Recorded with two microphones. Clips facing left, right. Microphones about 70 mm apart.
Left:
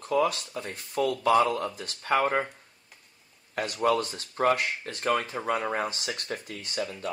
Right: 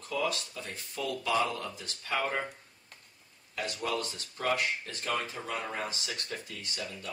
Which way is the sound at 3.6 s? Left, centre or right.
Left.